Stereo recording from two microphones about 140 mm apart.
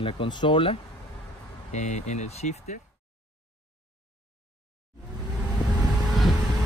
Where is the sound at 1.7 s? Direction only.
60° left (ahead or behind).